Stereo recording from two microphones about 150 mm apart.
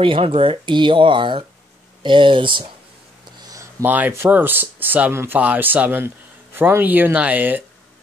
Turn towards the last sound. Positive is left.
turn(degrees=-10)  # may be behind; listen again after turning